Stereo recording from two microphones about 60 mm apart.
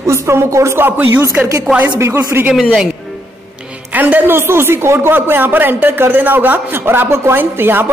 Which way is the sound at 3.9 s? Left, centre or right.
Right.